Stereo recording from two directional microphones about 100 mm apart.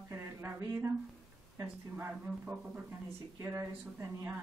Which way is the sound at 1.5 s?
20° right (ahead or behind).